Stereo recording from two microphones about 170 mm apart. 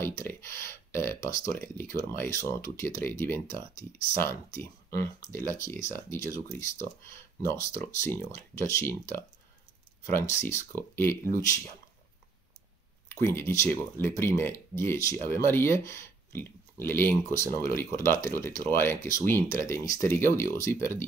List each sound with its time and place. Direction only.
0.0 s speech: 15° left (ahead or behind)
13.1 s speech: 15° left (ahead or behind)